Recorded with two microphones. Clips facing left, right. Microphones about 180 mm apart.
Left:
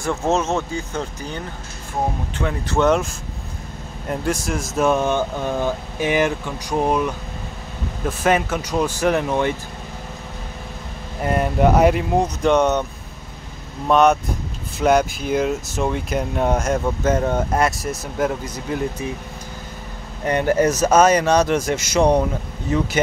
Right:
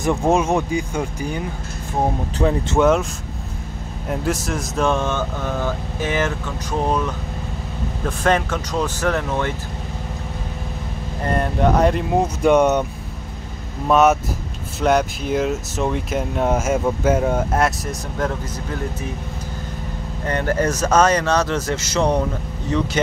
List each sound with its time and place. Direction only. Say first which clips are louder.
0.0 s speech: right 3 dB; 15° right (ahead or behind)
2.4 s speech: right 6 dB; 30° right (ahead or behind)
2.8 s speech: right 1 dB; centre (ahead or behind)
4.1 s speech: even; centre (ahead or behind)
8.2 s speech: even; 10° left (ahead or behind)
11.2 s speech: left 2 dB; 5° left (ahead or behind); by 12.8 s 10° right (ahead or behind)
13.8 s speech: even; 5° right (ahead or behind)
20.2 s speech: left 3 dB; 15° left (ahead or behind)